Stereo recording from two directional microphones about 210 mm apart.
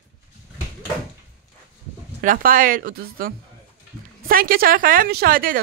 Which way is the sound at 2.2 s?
40° right (ahead or behind).